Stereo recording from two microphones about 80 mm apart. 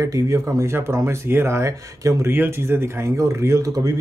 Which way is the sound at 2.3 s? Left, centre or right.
Right.